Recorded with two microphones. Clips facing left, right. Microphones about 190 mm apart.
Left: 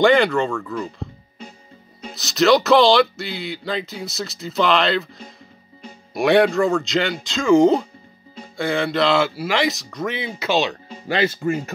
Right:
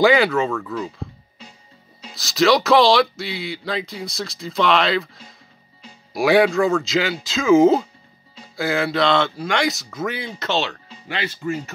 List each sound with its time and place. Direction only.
0.0 s speech: 5° right (ahead or behind)
2.1 s speech: centre (ahead or behind)
10.9 s speech: 45° left (ahead or behind)